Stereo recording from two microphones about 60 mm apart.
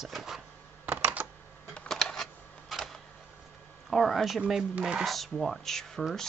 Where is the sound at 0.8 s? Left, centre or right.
Right.